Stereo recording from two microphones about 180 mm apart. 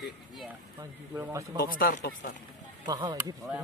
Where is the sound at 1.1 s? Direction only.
15° right (ahead or behind).